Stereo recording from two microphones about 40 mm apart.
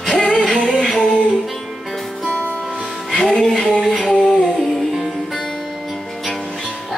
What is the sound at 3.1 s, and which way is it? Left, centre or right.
Music, centre.